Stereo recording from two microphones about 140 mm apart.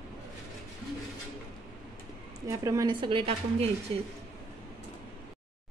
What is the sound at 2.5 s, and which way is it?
Speech, 25° right (ahead or behind).